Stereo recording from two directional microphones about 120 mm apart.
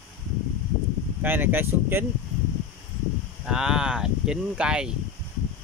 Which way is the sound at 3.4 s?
5° right (ahead or behind).